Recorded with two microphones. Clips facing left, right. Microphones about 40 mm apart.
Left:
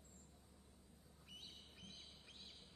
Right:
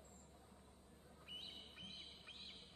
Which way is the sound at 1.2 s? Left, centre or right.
Right.